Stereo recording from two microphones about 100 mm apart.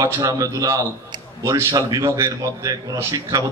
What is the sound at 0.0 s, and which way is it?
A man's voice, 35° right (ahead or behind).